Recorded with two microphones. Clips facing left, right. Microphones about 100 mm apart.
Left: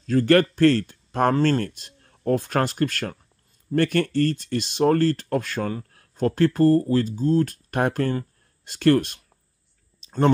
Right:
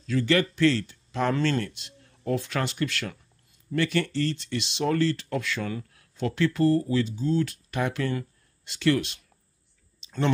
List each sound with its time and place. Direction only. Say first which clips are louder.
0.0 s speech: left 6 dB; 45° left (ahead or behind)
10.0 s clicking: left 6 dB; 45° left (ahead or behind)